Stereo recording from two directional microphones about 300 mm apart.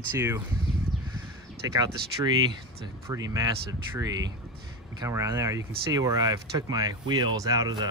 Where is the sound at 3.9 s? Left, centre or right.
Centre.